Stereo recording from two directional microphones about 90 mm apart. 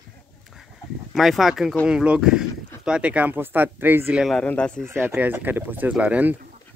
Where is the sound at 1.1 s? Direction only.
Centre (ahead or behind); by 4.2 s 20° right (ahead or behind).